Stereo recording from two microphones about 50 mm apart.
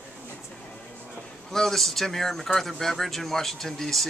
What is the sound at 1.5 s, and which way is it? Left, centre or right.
Speech, centre.